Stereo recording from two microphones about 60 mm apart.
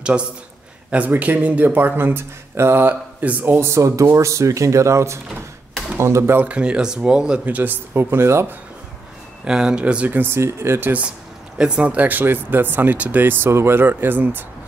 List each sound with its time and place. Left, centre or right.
0.9 s speech: right
3.5 s speech: right
6.4 s speech: centre
7.4 s speech: right
9.4 s speech: centre
10.0 s speech: right
10.8 s speech: right
11.5 s speech: centre
13.2 s speech: right